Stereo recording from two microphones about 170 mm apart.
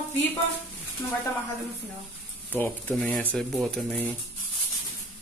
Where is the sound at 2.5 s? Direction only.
10° left (ahead or behind).